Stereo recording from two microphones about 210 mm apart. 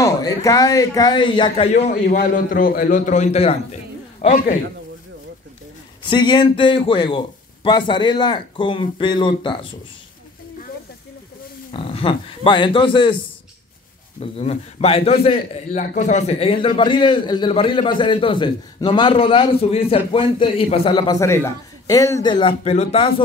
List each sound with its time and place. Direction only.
0.0 s speech: 15° left (ahead or behind)
1.9 s a man's voice: 45° left (ahead or behind)
6.0 s a man's voice: 20° left (ahead or behind)
11.7 s a man's voice: 25° left (ahead or behind)
14.2 s a man's voice: 30° left (ahead or behind)